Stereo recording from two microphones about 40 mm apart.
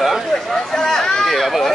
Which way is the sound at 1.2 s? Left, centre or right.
Centre.